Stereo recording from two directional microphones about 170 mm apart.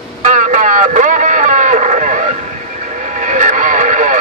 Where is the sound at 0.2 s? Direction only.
50° right (ahead or behind).